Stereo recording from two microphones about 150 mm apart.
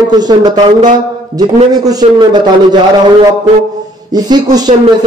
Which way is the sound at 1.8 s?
30° right (ahead or behind).